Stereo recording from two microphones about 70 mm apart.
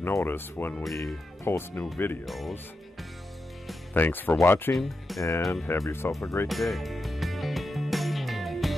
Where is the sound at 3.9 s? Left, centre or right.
Left.